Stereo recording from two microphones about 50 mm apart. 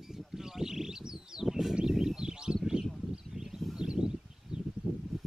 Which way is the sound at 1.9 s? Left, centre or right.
Centre.